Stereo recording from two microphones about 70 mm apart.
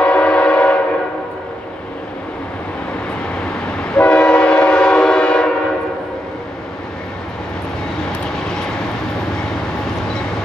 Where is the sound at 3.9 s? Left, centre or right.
Centre.